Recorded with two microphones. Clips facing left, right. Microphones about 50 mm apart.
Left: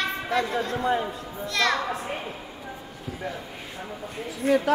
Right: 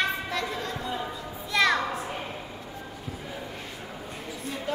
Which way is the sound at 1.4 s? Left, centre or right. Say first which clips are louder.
Right 1 dB; centre.